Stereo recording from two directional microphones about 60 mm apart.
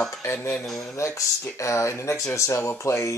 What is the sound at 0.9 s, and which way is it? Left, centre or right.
Speech, left.